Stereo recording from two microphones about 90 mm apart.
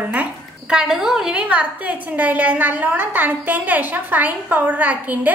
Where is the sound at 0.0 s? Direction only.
15° right (ahead or behind).